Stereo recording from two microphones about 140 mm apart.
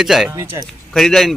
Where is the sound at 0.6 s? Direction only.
5° left (ahead or behind).